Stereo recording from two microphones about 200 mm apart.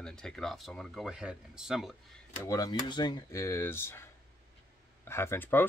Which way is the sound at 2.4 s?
20° left (ahead or behind).